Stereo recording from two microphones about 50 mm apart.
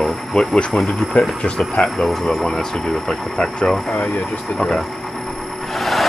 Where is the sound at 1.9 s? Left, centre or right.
Centre.